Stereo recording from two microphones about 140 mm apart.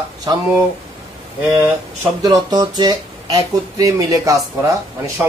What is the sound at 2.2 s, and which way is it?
Speech, 30° right (ahead or behind).